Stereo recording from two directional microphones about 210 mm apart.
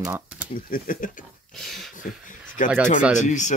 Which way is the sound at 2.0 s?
40° left (ahead or behind).